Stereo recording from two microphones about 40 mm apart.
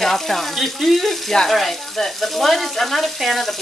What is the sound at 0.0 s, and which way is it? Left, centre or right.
Speech, centre.